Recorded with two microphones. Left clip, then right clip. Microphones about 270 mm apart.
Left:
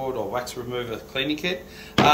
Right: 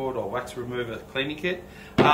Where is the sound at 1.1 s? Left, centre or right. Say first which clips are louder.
Left 2 dB; centre.